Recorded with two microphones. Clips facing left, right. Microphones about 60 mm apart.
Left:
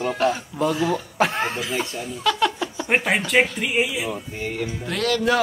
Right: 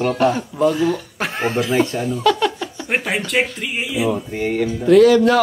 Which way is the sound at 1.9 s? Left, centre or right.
Right.